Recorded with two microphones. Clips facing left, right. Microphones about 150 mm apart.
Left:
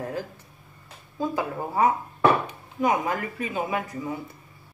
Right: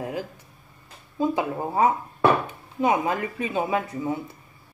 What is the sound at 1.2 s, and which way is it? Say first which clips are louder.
Speech: right 3 dB; 20° right (ahead or behind).